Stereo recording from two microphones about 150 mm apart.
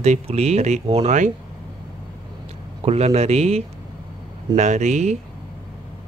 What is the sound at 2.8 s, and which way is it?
Speech, 45° right (ahead or behind).